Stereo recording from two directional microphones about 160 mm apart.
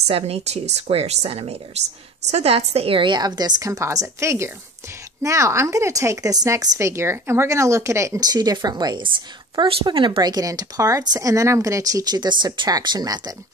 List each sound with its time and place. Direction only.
0.0 s speech: 40° right (ahead or behind); by 13.3 s 25° right (ahead or behind)